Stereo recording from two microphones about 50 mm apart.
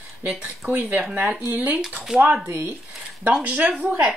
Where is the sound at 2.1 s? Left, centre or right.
Centre.